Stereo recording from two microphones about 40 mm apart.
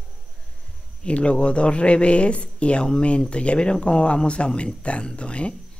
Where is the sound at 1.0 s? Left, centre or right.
Left.